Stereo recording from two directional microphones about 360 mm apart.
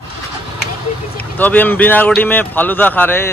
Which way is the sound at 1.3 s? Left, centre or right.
Centre.